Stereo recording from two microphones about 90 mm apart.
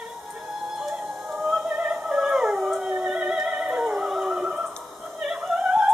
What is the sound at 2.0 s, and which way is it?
Dog, 5° right (ahead or behind).